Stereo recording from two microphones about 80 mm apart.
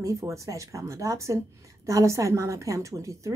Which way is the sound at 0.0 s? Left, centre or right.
Right.